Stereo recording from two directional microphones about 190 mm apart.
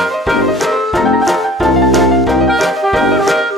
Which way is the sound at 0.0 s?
Centre (ahead or behind).